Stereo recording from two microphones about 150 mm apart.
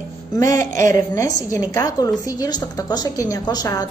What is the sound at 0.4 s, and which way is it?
A woman's voice, 20° left (ahead or behind).